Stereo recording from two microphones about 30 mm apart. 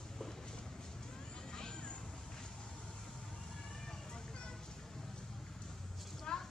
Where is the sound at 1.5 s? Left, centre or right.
Left.